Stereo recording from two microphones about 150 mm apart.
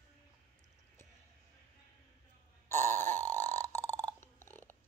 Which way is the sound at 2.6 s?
15° left (ahead or behind).